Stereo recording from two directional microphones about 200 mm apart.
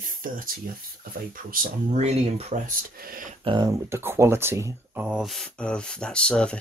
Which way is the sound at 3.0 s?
45° right (ahead or behind).